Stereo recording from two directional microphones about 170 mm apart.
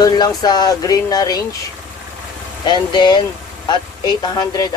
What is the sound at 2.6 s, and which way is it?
Speech, 25° left (ahead or behind).